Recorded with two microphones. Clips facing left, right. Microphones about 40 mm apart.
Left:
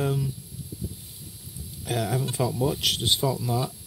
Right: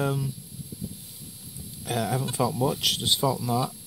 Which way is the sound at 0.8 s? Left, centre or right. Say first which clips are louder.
Even; right.